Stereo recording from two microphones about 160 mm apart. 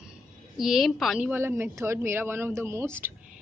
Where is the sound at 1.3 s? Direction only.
15° right (ahead or behind).